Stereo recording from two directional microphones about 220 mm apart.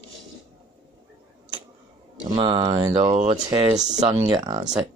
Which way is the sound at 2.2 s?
20° right (ahead or behind).